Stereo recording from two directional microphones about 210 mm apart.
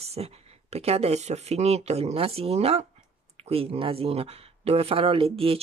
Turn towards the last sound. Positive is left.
turn(degrees=-25)  # may be behind; listen again after turning